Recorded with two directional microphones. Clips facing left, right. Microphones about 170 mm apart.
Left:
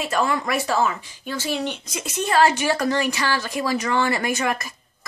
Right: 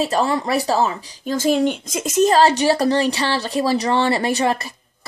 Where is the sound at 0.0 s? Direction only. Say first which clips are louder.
Right 4 dB; 35° right (ahead or behind).